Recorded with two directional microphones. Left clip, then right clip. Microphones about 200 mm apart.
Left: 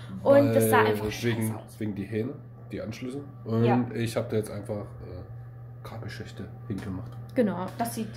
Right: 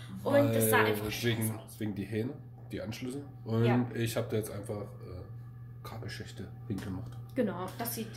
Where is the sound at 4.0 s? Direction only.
25° left (ahead or behind).